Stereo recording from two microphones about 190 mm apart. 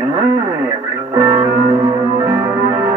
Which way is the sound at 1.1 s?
20° right (ahead or behind).